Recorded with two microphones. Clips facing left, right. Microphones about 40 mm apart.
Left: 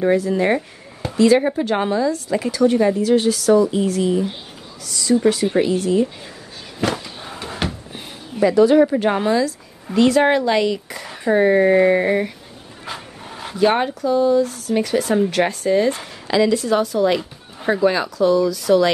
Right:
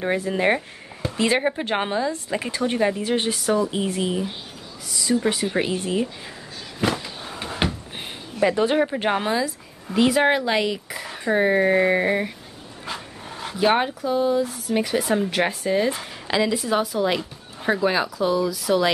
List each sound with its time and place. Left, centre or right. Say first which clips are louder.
0.0 s a woman's voice: left 5 dB; right
4.8 s a woman's voice: left 3 dB; centre
5.6 s a woman's voice: left 7 dB; right
6.8 s a sound: left 2 dB; centre
7.6 s a sound: right 1 dB; centre
8.5 s a woman's voice: left 7 dB; right
9.1 s speech: left 4 dB; centre
12.8 s a sound: left 1 dB; centre
13.6 s speech: left 3 dB; centre
14.0 s speech: left 5 dB; centre